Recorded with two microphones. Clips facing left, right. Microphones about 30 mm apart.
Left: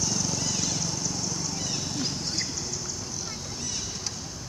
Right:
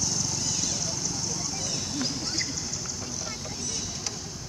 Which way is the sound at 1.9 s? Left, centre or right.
Centre.